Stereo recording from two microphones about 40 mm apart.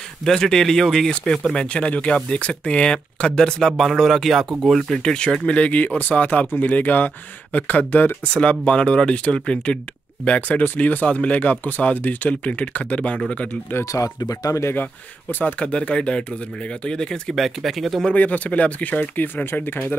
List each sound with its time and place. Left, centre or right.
0.2 s speech: centre
1.5 s speech: left; by 4.9 s centre
4.9 s speech: left
5.5 s speech: left
8.3 s speech: left
10.6 s speech: left
13.7 s speech: left
15.4 s speech: left
17.4 s speech: centre
18.1 s speech: left
19.2 s speech: left